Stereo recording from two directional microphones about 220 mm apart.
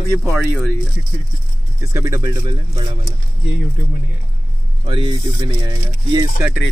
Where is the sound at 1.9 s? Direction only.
15° right (ahead or behind).